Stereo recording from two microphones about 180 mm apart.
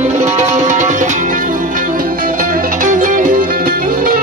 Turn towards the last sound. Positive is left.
turn(degrees=-50)  # may be behind; listen again after turning